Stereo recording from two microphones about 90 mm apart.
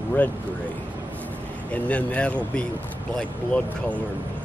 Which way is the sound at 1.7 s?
15° left (ahead or behind).